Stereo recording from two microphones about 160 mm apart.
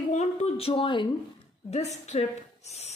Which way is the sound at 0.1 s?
45° left (ahead or behind).